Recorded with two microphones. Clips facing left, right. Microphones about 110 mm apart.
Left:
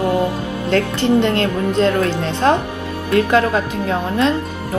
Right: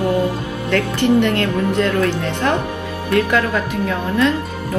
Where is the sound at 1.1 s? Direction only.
20° left (ahead or behind).